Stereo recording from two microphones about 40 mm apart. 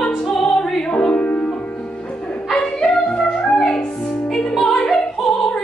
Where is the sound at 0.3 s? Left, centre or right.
Centre; by 1.5 s left.